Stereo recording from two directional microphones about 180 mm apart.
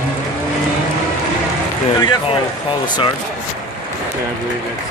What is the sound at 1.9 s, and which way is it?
Speech, 25° left (ahead or behind).